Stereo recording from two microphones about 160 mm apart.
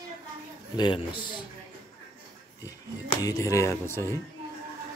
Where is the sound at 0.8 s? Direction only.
30° left (ahead or behind).